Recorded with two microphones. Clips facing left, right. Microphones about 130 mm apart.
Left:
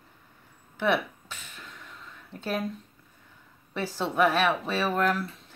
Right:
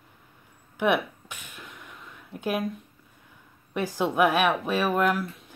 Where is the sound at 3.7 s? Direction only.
15° right (ahead or behind).